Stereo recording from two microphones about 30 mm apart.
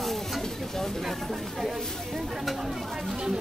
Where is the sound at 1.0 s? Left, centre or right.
Centre.